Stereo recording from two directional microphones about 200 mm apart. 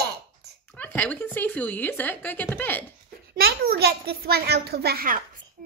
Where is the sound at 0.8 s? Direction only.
10° left (ahead or behind).